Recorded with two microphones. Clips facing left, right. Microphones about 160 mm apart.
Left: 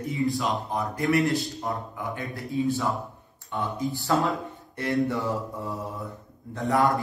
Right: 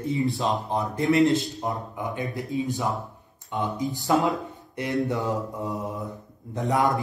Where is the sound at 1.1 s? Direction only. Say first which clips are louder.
Right 4 dB; 20° right (ahead or behind).